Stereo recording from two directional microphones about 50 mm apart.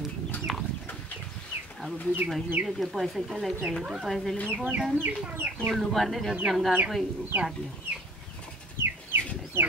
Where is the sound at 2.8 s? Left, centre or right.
Centre.